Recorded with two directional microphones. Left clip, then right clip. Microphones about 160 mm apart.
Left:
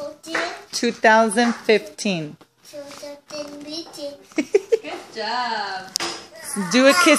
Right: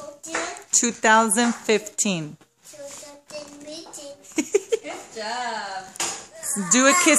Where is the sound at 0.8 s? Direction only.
15° right (ahead or behind).